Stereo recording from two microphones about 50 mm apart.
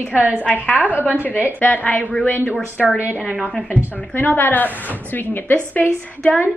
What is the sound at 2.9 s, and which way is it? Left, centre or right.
Speech, right.